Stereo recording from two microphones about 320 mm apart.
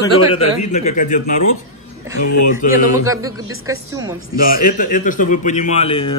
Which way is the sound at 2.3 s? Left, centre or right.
Left.